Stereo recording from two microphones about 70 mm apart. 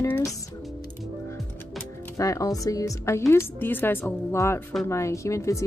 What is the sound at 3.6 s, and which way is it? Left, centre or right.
Speech, left.